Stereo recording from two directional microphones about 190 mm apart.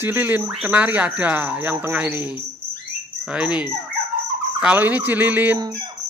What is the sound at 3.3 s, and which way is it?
Fowl, 5° right (ahead or behind).